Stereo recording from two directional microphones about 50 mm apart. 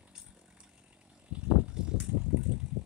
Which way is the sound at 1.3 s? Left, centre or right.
Right.